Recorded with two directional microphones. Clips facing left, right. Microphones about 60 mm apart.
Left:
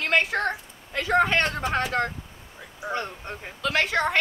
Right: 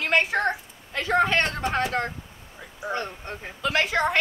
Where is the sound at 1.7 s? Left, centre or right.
Centre.